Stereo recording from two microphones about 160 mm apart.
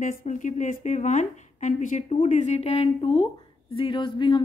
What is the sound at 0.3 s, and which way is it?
A woman's voice, 50° left (ahead or behind).